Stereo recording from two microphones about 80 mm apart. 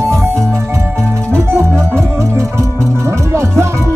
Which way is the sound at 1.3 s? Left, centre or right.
Right.